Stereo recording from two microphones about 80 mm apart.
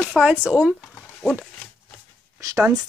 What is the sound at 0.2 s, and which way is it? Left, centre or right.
Speech, centre.